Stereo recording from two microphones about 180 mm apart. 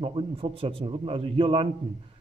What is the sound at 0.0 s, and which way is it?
A man's voice, 30° right (ahead or behind).